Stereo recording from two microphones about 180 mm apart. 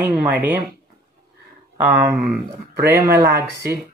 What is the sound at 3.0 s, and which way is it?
Speech, 55° right (ahead or behind).